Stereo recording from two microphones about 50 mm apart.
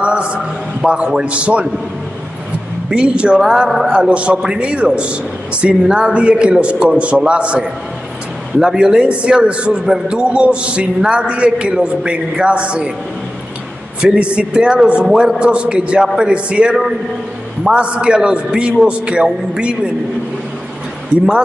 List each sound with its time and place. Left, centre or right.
0.0 s a sound: right
0.8 s a man's voice: centre
2.9 s a man's voice: right
14.0 s a man's voice: right
21.1 s a man's voice: right